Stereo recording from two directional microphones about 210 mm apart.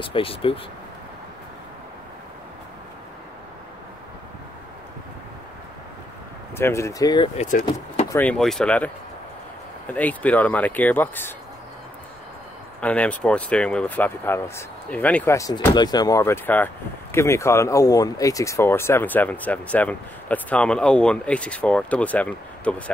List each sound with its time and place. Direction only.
0.0 s speech: 25° left (ahead or behind)
6.5 s speech: 10° left (ahead or behind)
7.3 s speech: 35° left (ahead or behind)
8.1 s speech: 5° left (ahead or behind)
12.8 s speech: 5° left (ahead or behind)